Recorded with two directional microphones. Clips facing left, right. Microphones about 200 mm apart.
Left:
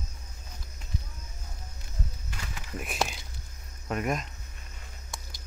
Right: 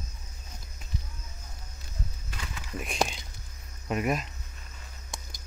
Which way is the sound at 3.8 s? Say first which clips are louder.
Right 2 dB; 5° right (ahead or behind).